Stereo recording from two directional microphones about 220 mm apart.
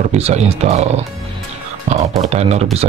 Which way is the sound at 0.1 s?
30° right (ahead or behind).